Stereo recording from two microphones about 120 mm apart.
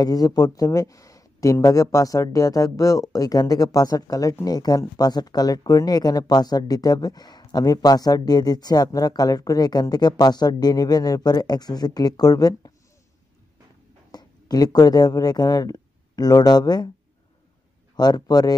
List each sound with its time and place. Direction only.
0.0 s speech: 30° left (ahead or behind)
14.1 s speech: 35° left (ahead or behind)
17.9 s speech: 35° left (ahead or behind)